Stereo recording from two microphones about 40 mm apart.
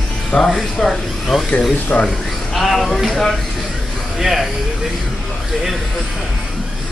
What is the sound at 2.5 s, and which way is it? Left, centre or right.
Speech, centre.